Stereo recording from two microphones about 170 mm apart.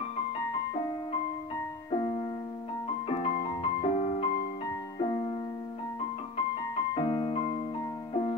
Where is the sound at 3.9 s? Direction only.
40° left (ahead or behind).